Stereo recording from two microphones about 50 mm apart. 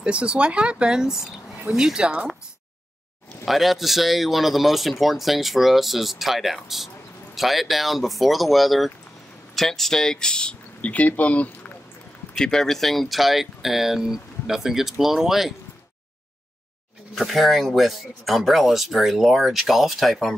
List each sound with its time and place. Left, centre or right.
0.0 s speech: right; by 2.0 s centre
2.0 s speech: right
3.4 s speech: centre; by 11.8 s left
12.4 s speech: centre
17.1 s speech: centre